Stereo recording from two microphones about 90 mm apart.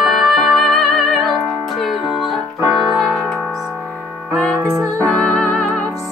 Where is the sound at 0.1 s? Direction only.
Centre (ahead or behind).